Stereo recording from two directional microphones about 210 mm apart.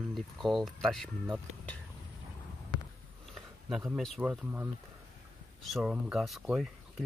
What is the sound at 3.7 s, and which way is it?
Speech, centre (ahead or behind).